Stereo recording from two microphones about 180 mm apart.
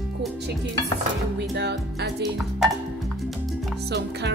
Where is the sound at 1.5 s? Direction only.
70° right (ahead or behind).